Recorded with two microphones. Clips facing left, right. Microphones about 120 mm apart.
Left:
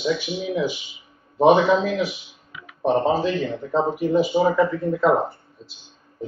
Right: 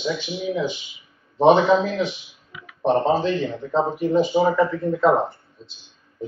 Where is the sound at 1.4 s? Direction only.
5° left (ahead or behind).